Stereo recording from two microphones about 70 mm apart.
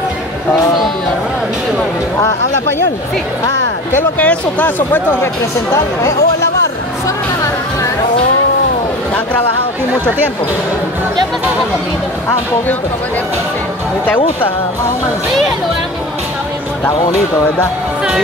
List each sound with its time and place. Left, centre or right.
4.2 s speech: left
5.2 s speech: left